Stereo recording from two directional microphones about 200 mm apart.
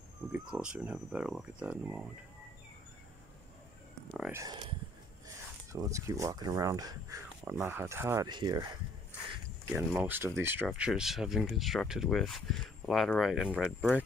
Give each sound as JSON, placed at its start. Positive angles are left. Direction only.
{"t": 0.3, "sound": "speech", "side_deg": -5}
{"t": 4.3, "sound": "speech", "side_deg": -20}
{"t": 9.7, "sound": "speech", "side_deg": -5}